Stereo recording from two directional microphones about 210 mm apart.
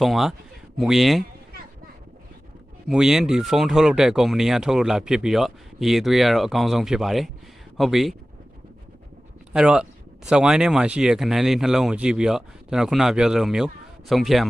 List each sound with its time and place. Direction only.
0.0 s speech: centre (ahead or behind)
2.9 s speech: 5° right (ahead or behind)
9.5 s speech: 5° right (ahead or behind)